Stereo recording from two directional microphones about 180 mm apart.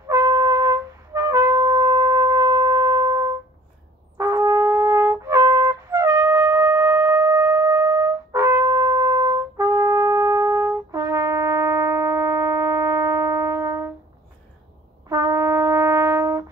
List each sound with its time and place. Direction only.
0.1 s music: 20° right (ahead or behind)
4.2 s brass instrument: 15° right (ahead or behind)
15.0 s brass instrument: 20° right (ahead or behind)